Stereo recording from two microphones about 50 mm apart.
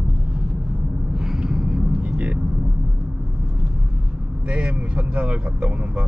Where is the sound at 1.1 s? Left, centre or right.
Centre.